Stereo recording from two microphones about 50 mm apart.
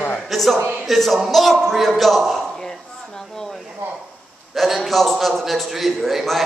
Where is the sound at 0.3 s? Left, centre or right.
Centre.